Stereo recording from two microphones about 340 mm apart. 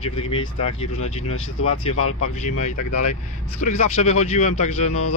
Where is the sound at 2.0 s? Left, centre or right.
Left.